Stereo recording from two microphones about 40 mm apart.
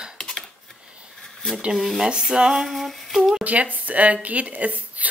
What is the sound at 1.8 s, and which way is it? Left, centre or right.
Speech, centre.